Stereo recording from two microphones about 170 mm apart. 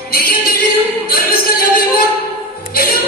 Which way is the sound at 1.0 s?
60° left (ahead or behind).